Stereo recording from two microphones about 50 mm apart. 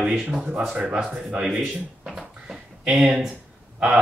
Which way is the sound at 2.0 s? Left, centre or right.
Centre.